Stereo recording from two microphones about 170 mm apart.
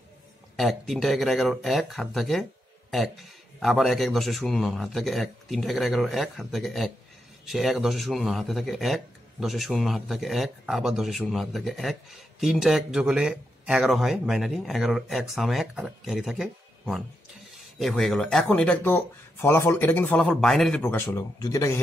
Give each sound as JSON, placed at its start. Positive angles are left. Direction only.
{"t": 0.6, "sound": "a man's voice", "side_deg": 0}
{"t": 3.5, "sound": "a man's voice", "side_deg": 0}
{"t": 20.8, "sound": "speech", "side_deg": 15}